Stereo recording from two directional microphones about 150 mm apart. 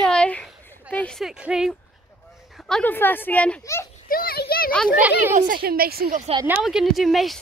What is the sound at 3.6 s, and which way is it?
Speech, 20° left (ahead or behind).